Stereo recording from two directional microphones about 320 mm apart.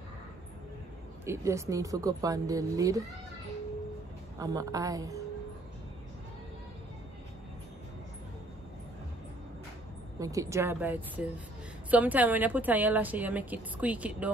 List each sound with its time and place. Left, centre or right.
1.2 s speech: centre
4.4 s speech: centre
10.1 s a woman's voice: centre